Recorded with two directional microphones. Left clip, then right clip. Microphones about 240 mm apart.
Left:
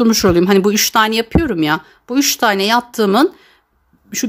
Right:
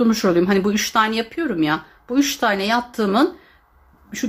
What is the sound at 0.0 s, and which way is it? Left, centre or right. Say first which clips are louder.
Speech: left 5 dB; left.